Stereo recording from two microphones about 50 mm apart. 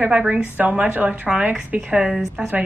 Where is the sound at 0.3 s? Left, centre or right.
Right.